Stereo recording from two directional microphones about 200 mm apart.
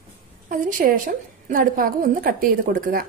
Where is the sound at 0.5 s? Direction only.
45° right (ahead or behind).